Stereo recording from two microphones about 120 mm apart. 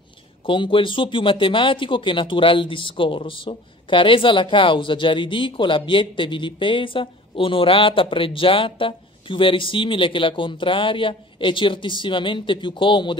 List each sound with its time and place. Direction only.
0.5 s speech: 45° left (ahead or behind)